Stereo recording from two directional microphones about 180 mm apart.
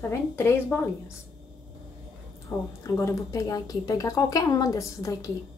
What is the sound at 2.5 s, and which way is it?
Speech, 15° left (ahead or behind).